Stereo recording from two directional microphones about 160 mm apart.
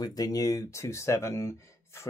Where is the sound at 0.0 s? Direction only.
25° left (ahead or behind).